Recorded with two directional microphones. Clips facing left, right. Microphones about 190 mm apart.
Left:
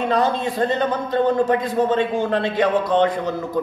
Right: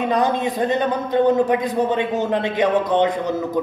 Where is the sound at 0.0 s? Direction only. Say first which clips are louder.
Right 1 dB; 15° right (ahead or behind).